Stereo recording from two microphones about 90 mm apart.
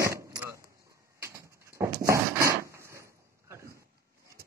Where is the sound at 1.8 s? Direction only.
35° right (ahead or behind).